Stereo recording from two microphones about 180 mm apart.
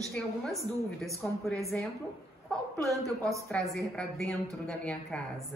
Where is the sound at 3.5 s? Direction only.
5° left (ahead or behind).